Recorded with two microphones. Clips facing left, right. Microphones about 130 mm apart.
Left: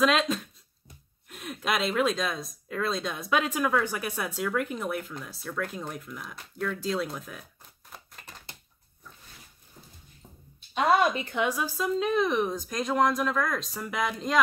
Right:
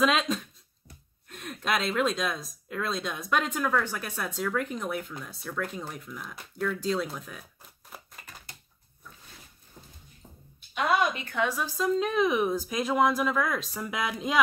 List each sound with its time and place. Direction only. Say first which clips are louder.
0.0 s speech: left 1 dB; centre (ahead or behind)
7.9 s typewriter: right 1 dB; 5° right (ahead or behind)
10.7 s speech: left 3 dB; 30° left (ahead or behind)
11.3 s speech: left 1 dB; 15° left (ahead or behind); by 14.4 s 5° right (ahead or behind)